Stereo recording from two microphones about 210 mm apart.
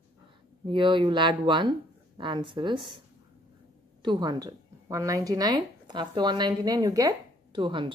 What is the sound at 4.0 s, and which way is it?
A woman's voice, 20° right (ahead or behind).